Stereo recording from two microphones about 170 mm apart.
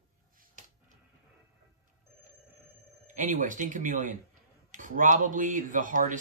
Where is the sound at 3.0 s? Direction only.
50° right (ahead or behind).